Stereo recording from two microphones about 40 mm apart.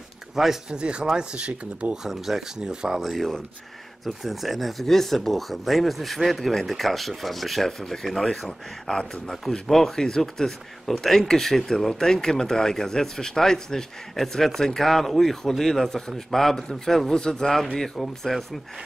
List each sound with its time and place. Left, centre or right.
0.7 s speech: right
2.0 s speech: centre
2.6 s speech: centre
3.0 s speech: centre